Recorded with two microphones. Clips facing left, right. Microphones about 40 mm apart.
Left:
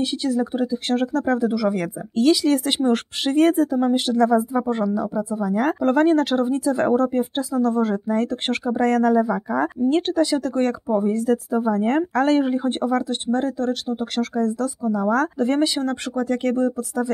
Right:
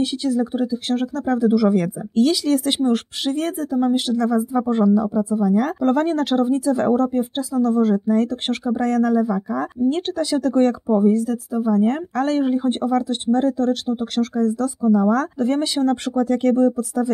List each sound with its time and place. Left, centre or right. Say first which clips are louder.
0.0 s speech: right 2 dB; centre
0.7 s speech: even; centre
2.5 s speech: right 1 dB; centre
11.5 s speech: right 5 dB; left
12.4 s speech: right 2 dB; centre